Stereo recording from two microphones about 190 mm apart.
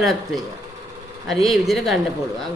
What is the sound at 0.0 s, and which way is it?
Speech, centre (ahead or behind).